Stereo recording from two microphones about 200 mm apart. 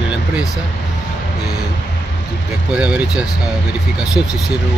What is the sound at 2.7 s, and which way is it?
Speech, 5° right (ahead or behind).